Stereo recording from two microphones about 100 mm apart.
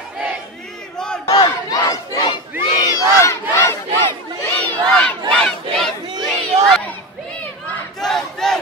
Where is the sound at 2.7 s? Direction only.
35° left (ahead or behind).